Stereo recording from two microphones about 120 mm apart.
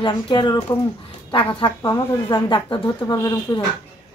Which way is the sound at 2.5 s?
45° left (ahead or behind).